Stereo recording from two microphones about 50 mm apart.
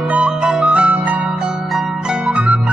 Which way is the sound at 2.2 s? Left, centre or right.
Right.